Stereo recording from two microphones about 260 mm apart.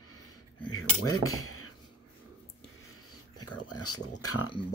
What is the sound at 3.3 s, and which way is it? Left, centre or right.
Speech, left.